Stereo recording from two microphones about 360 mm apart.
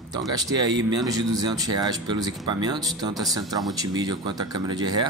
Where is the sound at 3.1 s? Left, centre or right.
Centre.